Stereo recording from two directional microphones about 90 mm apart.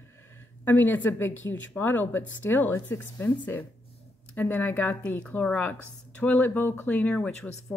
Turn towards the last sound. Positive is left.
turn(degrees=15)  # may be behind; listen again after turning